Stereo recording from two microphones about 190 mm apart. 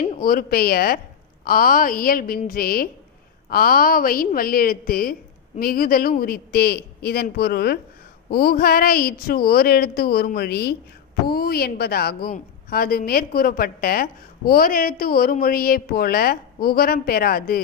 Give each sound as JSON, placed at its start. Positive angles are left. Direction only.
{"t": 0.2, "sound": "a woman's voice", "side_deg": 50}